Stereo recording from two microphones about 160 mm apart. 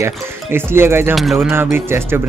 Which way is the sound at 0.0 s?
15° right (ahead or behind).